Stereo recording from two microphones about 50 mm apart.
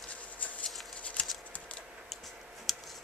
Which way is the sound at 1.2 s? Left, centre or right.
Left.